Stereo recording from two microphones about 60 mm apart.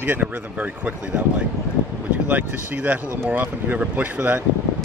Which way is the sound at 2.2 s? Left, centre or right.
Right.